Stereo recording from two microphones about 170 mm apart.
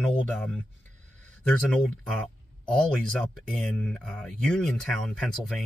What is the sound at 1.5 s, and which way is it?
Speech, 5° left (ahead or behind).